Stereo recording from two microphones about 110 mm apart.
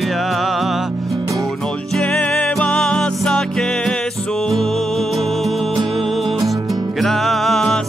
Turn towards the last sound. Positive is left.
turn(degrees=5)  # may be behind; listen again after turning